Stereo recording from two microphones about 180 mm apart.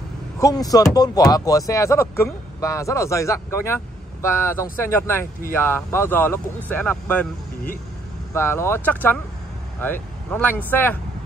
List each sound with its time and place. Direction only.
0.4 s speech: 20° left (ahead or behind)
8.3 s speech: 15° left (ahead or behind)